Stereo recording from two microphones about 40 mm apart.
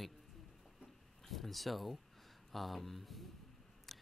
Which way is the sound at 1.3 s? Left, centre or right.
Centre.